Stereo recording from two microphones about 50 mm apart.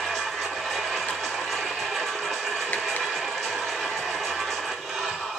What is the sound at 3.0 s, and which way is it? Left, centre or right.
Music, centre.